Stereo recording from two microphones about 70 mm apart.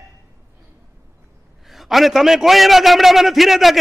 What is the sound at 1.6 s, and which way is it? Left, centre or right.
A man's voice, centre.